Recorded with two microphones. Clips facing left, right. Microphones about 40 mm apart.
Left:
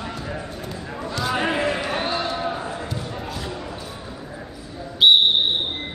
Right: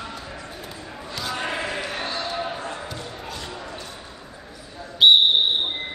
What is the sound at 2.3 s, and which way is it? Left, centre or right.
Basketball bounce, centre.